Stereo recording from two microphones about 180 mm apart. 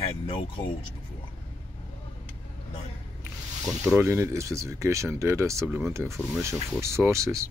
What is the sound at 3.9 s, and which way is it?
Speech, 15° right (ahead or behind).